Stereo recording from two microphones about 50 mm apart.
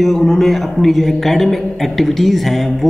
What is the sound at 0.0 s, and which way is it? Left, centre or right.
Speech, centre.